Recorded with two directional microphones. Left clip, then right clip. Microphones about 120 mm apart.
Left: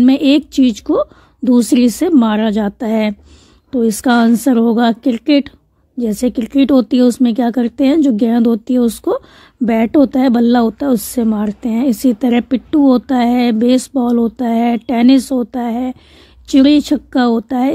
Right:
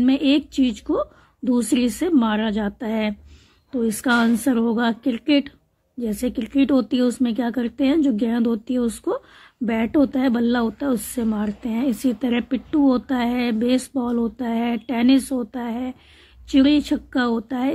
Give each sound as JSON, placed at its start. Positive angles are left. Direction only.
{"t": 0.0, "sound": "speech", "side_deg": 60}